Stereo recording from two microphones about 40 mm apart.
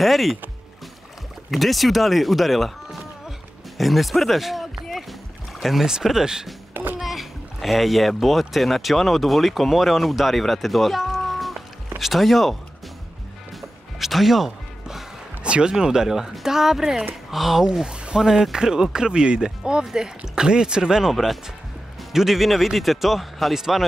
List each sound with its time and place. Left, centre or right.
0.0 s a man's voice: centre
1.5 s speech: centre
6.7 s a sound: right
7.0 s a man's voice: centre
13.6 s music: centre
15.4 s speech: right
15.8 s speech: centre
17.8 s a sound: right
18.2 s speech: centre
22.1 s a man's voice: centre